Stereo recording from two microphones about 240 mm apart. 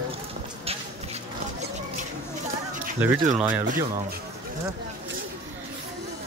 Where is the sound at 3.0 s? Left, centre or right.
Centre.